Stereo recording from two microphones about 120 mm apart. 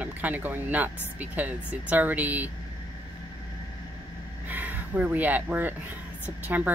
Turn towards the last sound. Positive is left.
turn(degrees=-15)  # may be behind; listen again after turning